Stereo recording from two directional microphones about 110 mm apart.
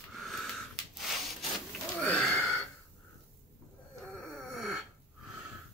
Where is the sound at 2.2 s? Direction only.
10° left (ahead or behind).